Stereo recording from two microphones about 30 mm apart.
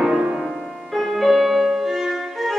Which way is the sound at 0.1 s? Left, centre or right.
Right.